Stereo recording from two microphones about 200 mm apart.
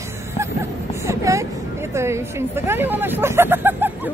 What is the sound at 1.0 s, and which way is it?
Speech, 15° right (ahead or behind).